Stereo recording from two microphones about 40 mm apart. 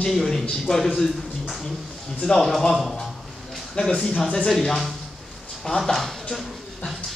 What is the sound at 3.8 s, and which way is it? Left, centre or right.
Speech, left.